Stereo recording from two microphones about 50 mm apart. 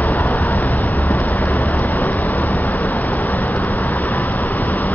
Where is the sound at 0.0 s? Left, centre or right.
Left.